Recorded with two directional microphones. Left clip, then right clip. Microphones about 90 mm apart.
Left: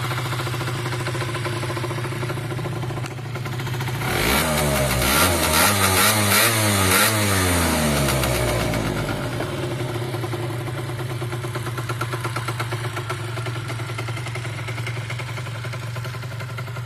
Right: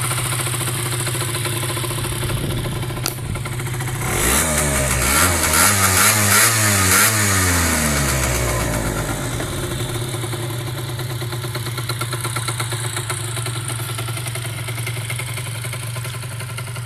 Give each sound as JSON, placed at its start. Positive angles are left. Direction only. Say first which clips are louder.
{"t": 4.0, "sound": "vehicle", "louder": "right 1 dB", "side_deg": 0}
{"t": 12.0, "sound": "vehicle", "louder": "right 1 dB", "side_deg": -45}